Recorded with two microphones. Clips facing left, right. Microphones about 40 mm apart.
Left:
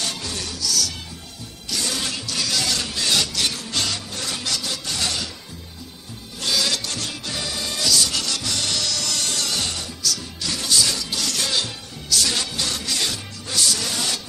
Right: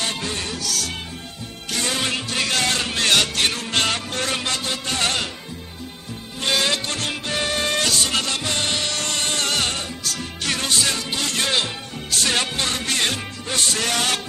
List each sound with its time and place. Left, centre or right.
0.0 s music: right
6.4 s music: right